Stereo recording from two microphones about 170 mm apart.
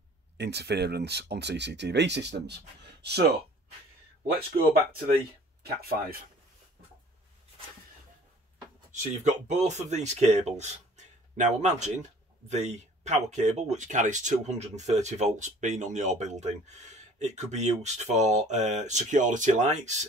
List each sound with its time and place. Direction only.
0.4 s speech: 80° right
5.6 s speech: 65° right (ahead or behind)
8.9 s speech: 45° right (ahead or behind)